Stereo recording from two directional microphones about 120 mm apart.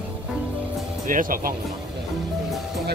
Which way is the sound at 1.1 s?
90° right.